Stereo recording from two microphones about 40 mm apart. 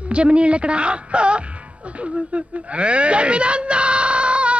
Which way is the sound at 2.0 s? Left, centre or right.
Right.